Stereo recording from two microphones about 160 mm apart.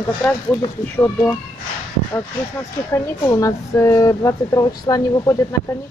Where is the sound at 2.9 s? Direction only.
20° left (ahead or behind).